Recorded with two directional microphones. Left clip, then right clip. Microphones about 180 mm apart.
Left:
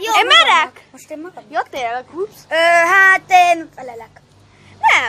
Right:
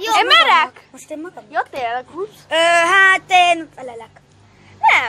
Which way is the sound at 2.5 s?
30° right (ahead or behind).